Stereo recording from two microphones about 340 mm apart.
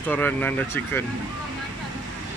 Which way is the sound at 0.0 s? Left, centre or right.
Centre.